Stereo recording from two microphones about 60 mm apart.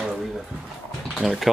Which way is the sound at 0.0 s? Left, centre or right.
Centre.